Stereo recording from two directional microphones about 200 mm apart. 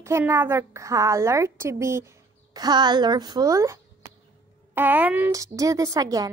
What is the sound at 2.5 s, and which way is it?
Speech, 20° right (ahead or behind).